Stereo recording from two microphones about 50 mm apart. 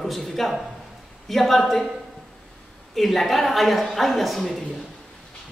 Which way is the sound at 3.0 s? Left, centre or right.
Centre.